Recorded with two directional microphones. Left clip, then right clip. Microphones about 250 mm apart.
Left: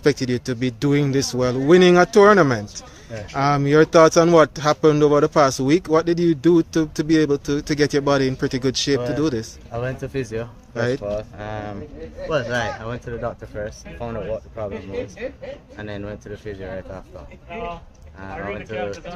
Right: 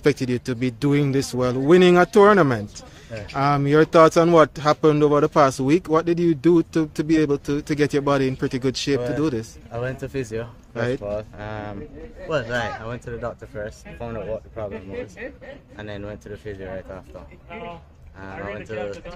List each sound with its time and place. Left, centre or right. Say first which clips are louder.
0.0 s speech: left 1 dB; centre
15.8 s speech: left 1 dB; centre
17.5 s speech: left 5 dB; left
18.2 s speech: left 3 dB; centre